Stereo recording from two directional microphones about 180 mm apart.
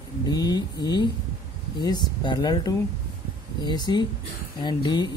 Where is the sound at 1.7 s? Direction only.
25° left (ahead or behind).